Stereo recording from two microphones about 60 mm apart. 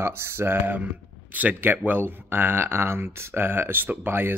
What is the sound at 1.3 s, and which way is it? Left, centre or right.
Speech, right.